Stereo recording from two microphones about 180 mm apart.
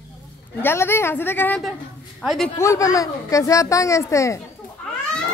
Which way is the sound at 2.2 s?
Centre (ahead or behind).